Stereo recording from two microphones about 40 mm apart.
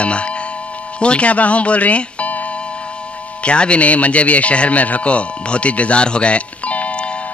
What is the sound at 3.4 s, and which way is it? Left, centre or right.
A man's voice, left.